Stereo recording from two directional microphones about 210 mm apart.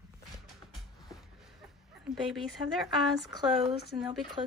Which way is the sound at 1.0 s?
Centre (ahead or behind).